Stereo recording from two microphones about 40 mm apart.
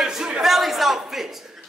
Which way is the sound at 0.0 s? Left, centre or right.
Centre.